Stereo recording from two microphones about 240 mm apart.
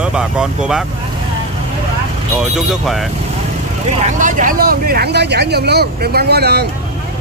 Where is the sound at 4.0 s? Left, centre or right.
Right.